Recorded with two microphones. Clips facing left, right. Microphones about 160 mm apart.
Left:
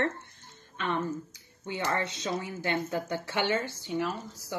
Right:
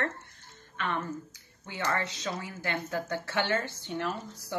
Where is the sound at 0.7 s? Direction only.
20° left (ahead or behind).